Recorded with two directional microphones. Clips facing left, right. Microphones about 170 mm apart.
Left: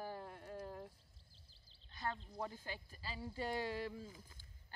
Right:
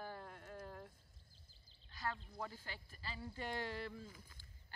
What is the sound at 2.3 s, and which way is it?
Speech, 20° left (ahead or behind).